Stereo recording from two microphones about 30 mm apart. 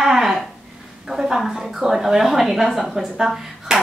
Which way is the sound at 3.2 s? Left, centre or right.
Centre.